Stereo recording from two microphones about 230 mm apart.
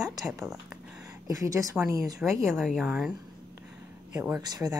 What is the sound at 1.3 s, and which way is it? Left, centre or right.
Speech, centre.